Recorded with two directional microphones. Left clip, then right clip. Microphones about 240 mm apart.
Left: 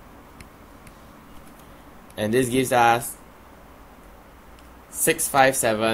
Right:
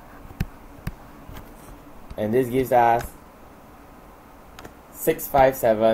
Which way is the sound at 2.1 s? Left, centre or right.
Left.